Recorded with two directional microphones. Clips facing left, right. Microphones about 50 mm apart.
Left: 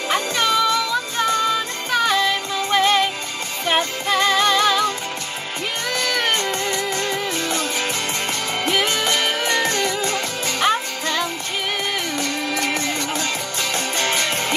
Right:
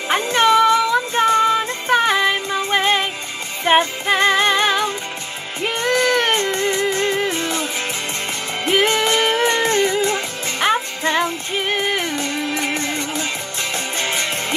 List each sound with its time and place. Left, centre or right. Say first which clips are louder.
0.1 s music: right 5 dB; right
8.6 s music: right 5 dB; right